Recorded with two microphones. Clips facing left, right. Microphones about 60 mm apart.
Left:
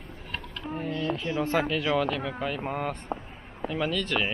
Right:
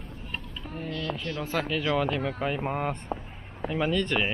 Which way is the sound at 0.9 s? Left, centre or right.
Left.